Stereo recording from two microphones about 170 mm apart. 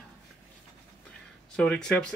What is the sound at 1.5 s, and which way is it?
Speech, 5° left (ahead or behind).